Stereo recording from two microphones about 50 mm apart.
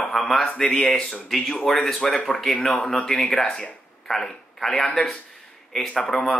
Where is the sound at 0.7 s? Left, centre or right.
Left.